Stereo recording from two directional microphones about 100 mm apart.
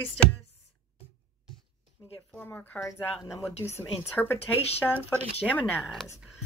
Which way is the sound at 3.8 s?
20° left (ahead or behind).